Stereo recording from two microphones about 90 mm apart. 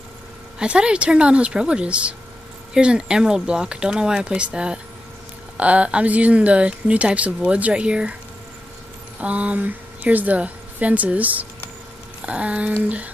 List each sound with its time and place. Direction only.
0.6 s speech: 10° right (ahead or behind)
9.2 s speech: 15° right (ahead or behind)